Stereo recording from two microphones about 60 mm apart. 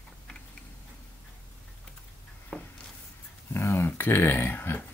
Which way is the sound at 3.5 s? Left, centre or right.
Left.